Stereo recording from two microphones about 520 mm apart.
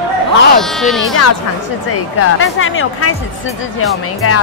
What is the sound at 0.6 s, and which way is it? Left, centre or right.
Speech, centre.